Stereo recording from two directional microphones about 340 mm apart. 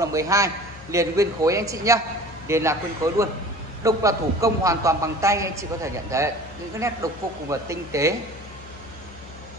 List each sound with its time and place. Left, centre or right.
0.0 s a man's voice: centre